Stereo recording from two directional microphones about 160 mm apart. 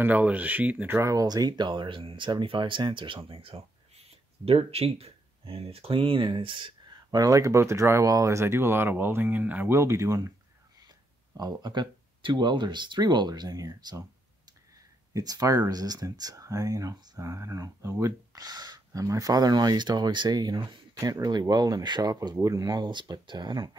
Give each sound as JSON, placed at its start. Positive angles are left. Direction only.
{"t": 0.0, "sound": "speech", "side_deg": -10}
{"t": 11.3, "sound": "speech", "side_deg": -25}
{"t": 15.1, "sound": "speech", "side_deg": -20}